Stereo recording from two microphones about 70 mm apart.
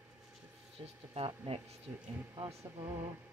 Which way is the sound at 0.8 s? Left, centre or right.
Right.